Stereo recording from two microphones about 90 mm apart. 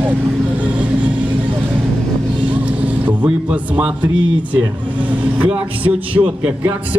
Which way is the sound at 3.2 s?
15° right (ahead or behind).